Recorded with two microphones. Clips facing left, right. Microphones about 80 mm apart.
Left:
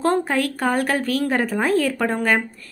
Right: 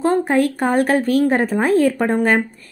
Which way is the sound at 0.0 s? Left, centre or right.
Right.